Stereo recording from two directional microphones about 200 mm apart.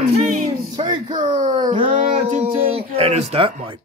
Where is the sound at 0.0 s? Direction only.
45° right (ahead or behind).